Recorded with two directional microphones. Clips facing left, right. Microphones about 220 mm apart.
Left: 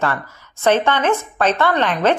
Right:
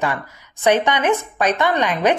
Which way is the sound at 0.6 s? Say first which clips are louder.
Even; 15° right (ahead or behind).